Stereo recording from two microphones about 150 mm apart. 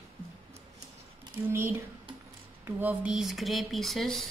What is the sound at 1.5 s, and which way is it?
Speech, 15° right (ahead or behind).